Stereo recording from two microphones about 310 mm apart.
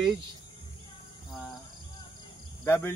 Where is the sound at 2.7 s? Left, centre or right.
Centre.